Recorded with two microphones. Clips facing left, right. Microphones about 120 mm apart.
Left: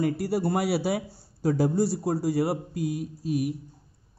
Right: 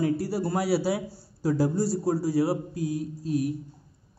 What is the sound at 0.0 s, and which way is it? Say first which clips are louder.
A man's voice: left 1 dB; 60° left (ahead or behind).